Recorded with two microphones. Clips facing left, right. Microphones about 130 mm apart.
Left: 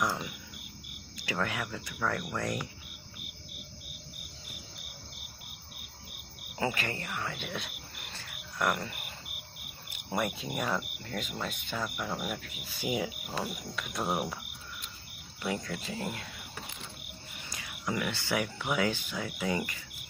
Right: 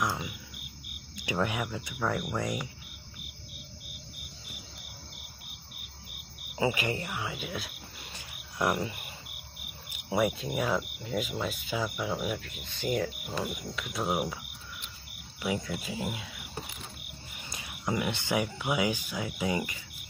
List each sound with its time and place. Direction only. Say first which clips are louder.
1.1 s speech: right 3 dB; 15° right (ahead or behind)
6.5 s cricket: right 4 dB; 10° right (ahead or behind)
8.1 s cricket: left 1 dB; 15° right (ahead or behind)
10.0 s speech: right 5 dB; 5° right (ahead or behind)
15.4 s speech: right 2 dB; 10° right (ahead or behind)
17.5 s speech: right 2 dB; 25° right (ahead or behind)